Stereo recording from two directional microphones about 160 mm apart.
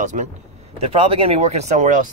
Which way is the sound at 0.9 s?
35° right (ahead or behind).